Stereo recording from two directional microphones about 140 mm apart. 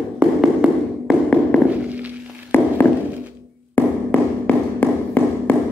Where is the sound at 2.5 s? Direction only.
15° left (ahead or behind).